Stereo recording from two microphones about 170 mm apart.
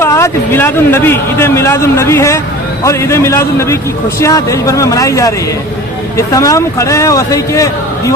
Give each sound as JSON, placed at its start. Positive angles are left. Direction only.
{"t": 0.0, "sound": "speech", "side_deg": 15}